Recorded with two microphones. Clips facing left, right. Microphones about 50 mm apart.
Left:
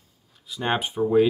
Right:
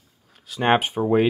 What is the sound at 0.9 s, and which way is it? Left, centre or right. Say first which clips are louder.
Speech: even; right.